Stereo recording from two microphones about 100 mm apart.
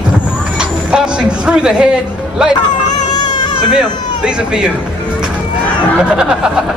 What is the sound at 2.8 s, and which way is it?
Baby cry, 45° left (ahead or behind).